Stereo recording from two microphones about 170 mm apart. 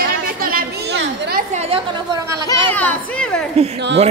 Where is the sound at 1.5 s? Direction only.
40° right (ahead or behind).